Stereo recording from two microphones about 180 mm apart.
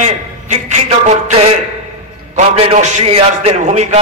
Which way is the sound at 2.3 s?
35° right (ahead or behind).